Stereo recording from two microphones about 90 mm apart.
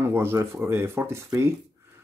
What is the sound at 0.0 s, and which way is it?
Speech, 25° right (ahead or behind).